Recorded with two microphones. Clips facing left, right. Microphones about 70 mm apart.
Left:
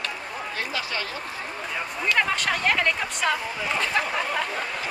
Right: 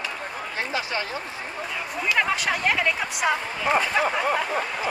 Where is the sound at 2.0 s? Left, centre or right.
Centre.